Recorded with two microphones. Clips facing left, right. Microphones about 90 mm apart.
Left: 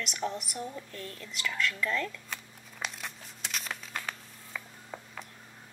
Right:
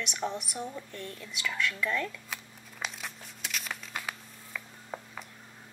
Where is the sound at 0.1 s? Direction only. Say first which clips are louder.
Even; 15° right (ahead or behind).